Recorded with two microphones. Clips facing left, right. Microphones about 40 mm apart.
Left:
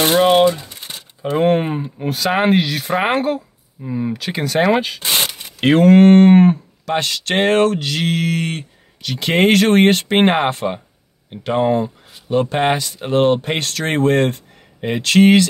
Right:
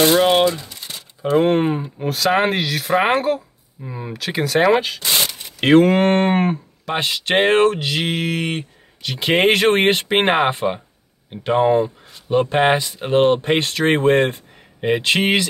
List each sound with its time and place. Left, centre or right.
0.1 s speech: centre
0.5 s typing: left
1.3 s speech: centre
5.0 s a sound: left
5.6 s speech: centre